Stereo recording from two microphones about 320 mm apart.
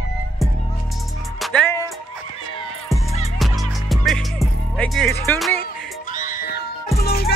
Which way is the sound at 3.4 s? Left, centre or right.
Centre.